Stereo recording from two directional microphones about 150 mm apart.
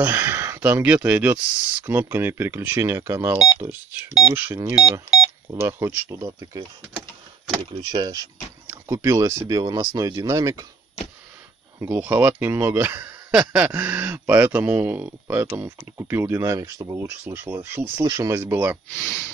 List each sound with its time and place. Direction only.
0.0 s speech: 15° right (ahead or behind)
5.5 s speech: 15° right (ahead or behind)
11.8 s speech: 10° right (ahead or behind)